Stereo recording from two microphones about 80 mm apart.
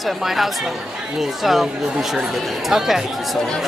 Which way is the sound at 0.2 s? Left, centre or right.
Centre.